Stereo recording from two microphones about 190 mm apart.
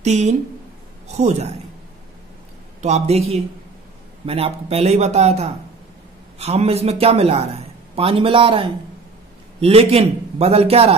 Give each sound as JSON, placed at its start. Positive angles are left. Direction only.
{"t": 0.0, "sound": "a man's voice", "side_deg": -35}
{"t": 2.8, "sound": "a man's voice", "side_deg": -35}